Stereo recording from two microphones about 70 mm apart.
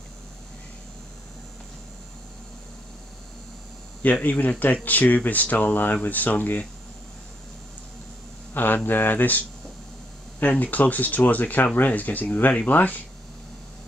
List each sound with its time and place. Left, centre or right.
4.0 s speech: left
8.5 s speech: left
10.4 s speech: left